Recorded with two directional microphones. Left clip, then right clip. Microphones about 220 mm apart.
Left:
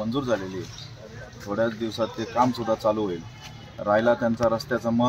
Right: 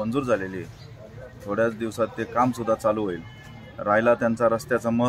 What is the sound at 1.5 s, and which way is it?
Speech, 20° right (ahead or behind).